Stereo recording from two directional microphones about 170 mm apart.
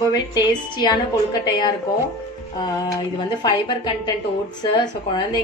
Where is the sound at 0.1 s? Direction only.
25° left (ahead or behind).